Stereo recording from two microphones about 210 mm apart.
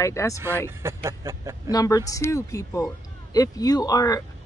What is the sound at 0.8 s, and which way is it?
Speech, 10° right (ahead or behind).